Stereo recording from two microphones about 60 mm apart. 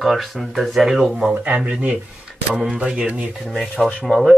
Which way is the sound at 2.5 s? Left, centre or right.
Centre.